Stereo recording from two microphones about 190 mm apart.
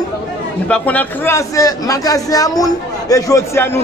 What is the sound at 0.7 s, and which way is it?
Speech, 10° left (ahead or behind).